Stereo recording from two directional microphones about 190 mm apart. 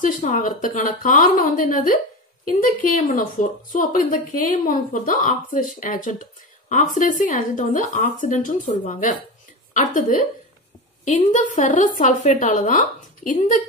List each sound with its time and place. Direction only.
0.0 s a woman's voice: 45° left (ahead or behind)